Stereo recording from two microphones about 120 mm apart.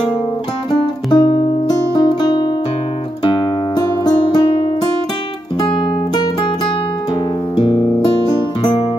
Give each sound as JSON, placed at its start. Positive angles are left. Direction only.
{"t": 0.7, "sound": "music", "side_deg": 40}
{"t": 7.5, "sound": "music", "side_deg": 45}